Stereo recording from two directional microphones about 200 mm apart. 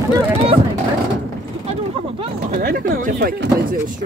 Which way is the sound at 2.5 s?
45° right (ahead or behind).